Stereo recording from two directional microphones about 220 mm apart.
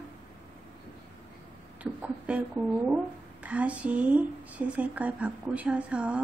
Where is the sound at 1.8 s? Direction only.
5° right (ahead or behind).